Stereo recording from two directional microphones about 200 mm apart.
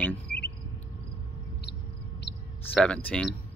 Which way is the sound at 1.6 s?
55° left (ahead or behind).